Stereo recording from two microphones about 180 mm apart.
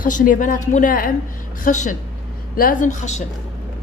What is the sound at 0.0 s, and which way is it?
A woman's voice, 50° left (ahead or behind).